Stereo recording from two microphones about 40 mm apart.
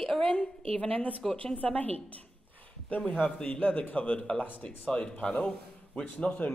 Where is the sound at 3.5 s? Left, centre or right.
Left.